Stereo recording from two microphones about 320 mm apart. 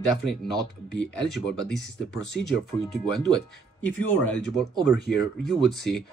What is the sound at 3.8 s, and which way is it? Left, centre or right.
Speech, centre.